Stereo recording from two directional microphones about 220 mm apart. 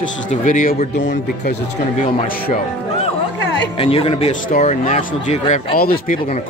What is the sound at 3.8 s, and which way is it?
Speech, 25° left (ahead or behind).